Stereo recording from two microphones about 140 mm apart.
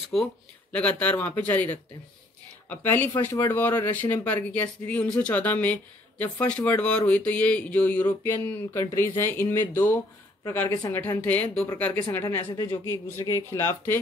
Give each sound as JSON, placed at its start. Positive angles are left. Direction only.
{"t": 0.1, "sound": "speech", "side_deg": 5}
{"t": 2.7, "sound": "speech", "side_deg": 15}